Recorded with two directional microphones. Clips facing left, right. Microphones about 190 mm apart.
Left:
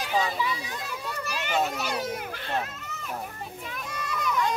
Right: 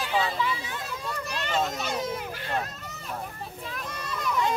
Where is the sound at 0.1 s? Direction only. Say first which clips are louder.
Left 1 dB; 15° left (ahead or behind).